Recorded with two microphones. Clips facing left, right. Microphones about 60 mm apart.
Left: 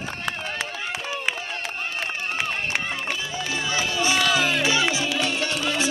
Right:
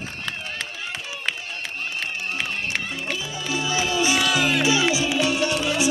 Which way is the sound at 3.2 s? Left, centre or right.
Left.